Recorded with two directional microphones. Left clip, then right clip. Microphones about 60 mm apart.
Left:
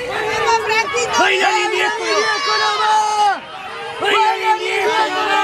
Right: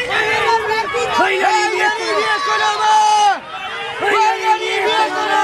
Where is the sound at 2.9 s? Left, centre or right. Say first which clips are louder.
Right 5 dB; centre.